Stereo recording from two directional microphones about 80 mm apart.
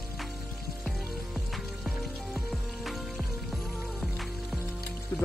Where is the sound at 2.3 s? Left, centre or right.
Centre.